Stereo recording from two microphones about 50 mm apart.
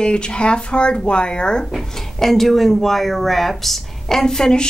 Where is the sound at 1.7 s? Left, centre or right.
Centre.